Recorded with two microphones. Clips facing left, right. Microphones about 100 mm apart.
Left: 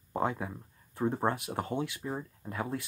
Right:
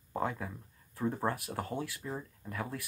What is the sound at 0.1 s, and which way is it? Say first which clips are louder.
Speech: left 3 dB; 25° left (ahead or behind).